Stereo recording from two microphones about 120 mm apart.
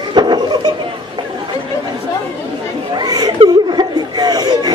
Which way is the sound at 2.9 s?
35° right (ahead or behind).